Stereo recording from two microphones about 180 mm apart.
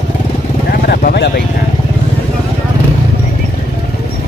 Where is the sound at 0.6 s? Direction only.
55° left (ahead or behind).